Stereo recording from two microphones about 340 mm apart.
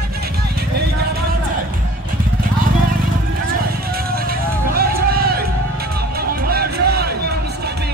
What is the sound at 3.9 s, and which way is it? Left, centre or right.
Music, right.